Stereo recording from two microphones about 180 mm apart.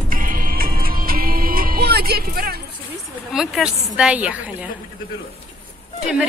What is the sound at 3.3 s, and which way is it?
A woman's voice, 5° right (ahead or behind).